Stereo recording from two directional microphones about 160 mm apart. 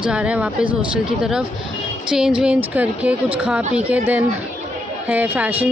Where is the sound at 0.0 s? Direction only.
5° right (ahead or behind).